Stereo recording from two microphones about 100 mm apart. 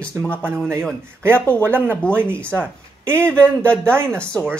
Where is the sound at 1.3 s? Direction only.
15° left (ahead or behind).